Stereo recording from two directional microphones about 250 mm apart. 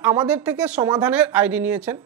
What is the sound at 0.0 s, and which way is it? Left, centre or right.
Speech, centre.